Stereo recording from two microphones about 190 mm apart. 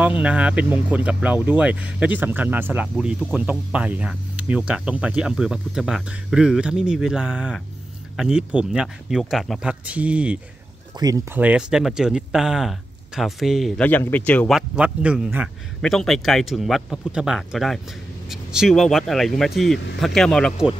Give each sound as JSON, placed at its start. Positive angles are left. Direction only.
{"t": 0.2, "sound": "speech", "side_deg": -5}
{"t": 3.4, "sound": "speech", "side_deg": -5}
{"t": 10.9, "sound": "speech", "side_deg": -20}
{"t": 11.3, "sound": "speech", "side_deg": -5}
{"t": 14.8, "sound": "speech", "side_deg": -5}